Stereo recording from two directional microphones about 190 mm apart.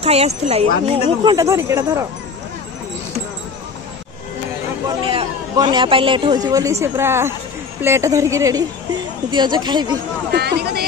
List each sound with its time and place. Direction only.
0.0 s speech: 35° right (ahead or behind)
1.3 s a woman's voice: 15° right (ahead or behind)
4.8 s a man's voice: 25° right (ahead or behind)
10.3 s speech: 60° right (ahead or behind)